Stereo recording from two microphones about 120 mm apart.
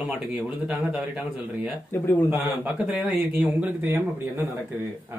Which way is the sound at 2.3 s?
15° right (ahead or behind).